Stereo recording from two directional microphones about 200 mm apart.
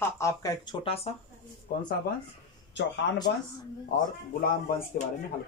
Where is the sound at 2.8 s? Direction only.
60° left (ahead or behind).